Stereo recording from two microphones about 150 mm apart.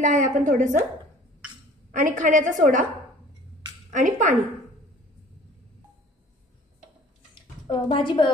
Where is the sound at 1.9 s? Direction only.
60° right (ahead or behind).